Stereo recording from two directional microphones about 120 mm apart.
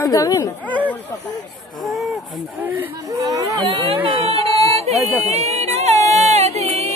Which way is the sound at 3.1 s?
30° right (ahead or behind).